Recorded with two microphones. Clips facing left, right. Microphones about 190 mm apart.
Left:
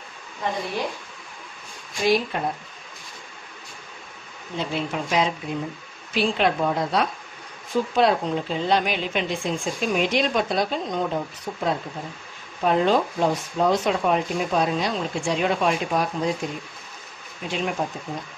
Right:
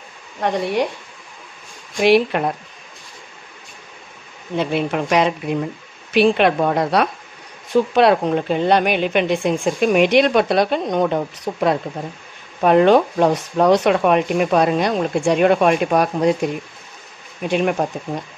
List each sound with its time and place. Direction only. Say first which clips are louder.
0.4 s a woman's voice: right 7 dB; 70° right (ahead or behind)
2.0 s a woman's voice: right 7 dB; 70° right (ahead or behind)
4.6 s a woman's voice: right 7 dB; 65° right (ahead or behind)
17.4 s speech: right 8 dB; 60° right (ahead or behind)